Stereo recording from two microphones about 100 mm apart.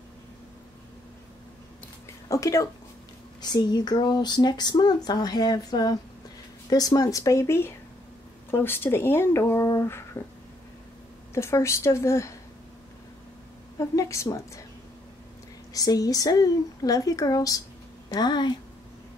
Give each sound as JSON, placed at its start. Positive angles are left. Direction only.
{"t": 2.2, "sound": "speech", "side_deg": 30}
{"t": 3.3, "sound": "speech", "side_deg": 45}
{"t": 11.3, "sound": "speech", "side_deg": 30}
{"t": 13.7, "sound": "speech", "side_deg": 30}
{"t": 15.7, "sound": "speech", "side_deg": 35}